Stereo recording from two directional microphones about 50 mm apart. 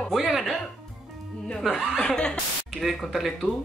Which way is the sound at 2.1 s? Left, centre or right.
Left.